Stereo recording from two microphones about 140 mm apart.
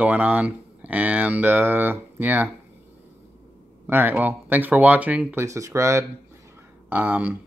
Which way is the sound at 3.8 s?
15° right (ahead or behind).